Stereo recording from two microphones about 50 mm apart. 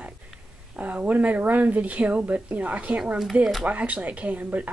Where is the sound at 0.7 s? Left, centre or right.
Right.